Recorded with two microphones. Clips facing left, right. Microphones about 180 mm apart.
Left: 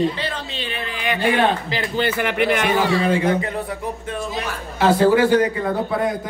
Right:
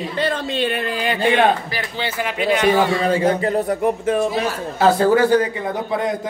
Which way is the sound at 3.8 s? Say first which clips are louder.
Right 9 dB; 70° right (ahead or behind).